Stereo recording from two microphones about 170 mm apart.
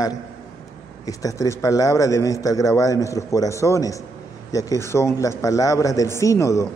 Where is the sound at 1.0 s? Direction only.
20° left (ahead or behind).